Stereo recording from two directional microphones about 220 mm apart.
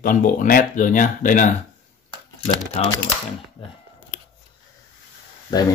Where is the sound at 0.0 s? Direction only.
40° left (ahead or behind).